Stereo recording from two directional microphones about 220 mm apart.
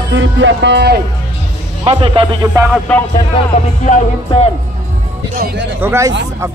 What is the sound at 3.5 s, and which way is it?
Speech, 35° left (ahead or behind).